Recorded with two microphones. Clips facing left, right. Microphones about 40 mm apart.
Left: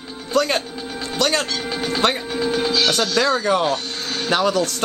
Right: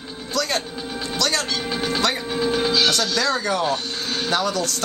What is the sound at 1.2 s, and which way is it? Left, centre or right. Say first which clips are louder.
Speech: left 3 dB; left.